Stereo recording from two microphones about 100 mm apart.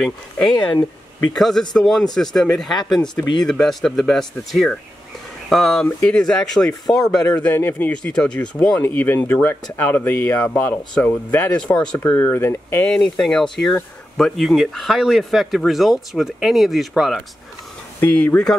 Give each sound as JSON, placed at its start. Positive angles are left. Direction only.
{"t": 0.0, "sound": "speech", "side_deg": 5}
{"t": 7.3, "sound": "speech", "side_deg": 20}
{"t": 11.6, "sound": "speech", "side_deg": 10}
{"t": 12.0, "sound": "speech", "side_deg": 20}
{"t": 12.8, "sound": "speech", "side_deg": 10}
{"t": 18.0, "sound": "speech", "side_deg": 15}